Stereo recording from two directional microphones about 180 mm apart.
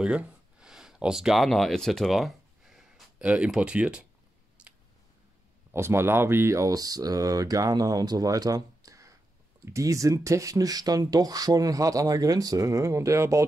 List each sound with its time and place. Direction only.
0.0 s speech: 5° right (ahead or behind)
4.6 s a sound: 5° right (ahead or behind)
5.7 s speech: 15° right (ahead or behind)